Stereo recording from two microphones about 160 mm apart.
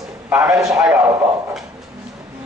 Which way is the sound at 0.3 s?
10° right (ahead or behind).